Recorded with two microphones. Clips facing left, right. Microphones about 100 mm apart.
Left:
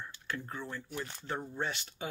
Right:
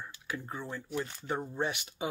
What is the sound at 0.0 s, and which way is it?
Speech, 10° right (ahead or behind).